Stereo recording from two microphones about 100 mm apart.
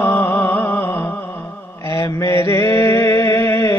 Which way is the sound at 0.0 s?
20° left (ahead or behind).